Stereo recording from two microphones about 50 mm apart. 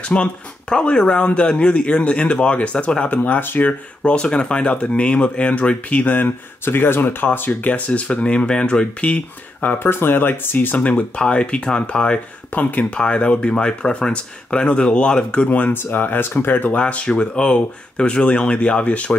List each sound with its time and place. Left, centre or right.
0.0 s speech: left
3.2 s speech: left
4.0 s speech: centre; by 7.7 s left
7.7 s speech: left
9.8 s speech: left
10.9 s speech: left
12.5 s speech: left
12.9 s speech: left
16.7 s speech: left